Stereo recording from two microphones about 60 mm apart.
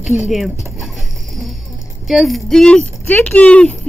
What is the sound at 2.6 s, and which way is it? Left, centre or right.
Speech, centre.